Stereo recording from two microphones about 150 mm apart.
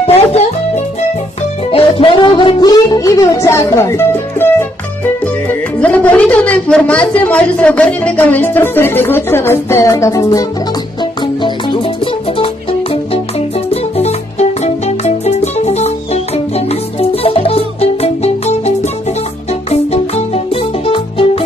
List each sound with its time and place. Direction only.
0.0 s music: 45° left (ahead or behind)
1.7 s music: 40° left (ahead or behind); by 4.6 s 15° left (ahead or behind)
5.2 s speech: 10° left (ahead or behind)
11.0 s music: 30° left (ahead or behind)
13.9 s music: 45° left (ahead or behind)
19.7 s music: 45° left (ahead or behind)